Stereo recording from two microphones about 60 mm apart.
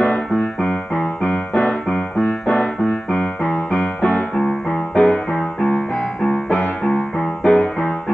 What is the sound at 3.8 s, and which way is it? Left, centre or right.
Music, left.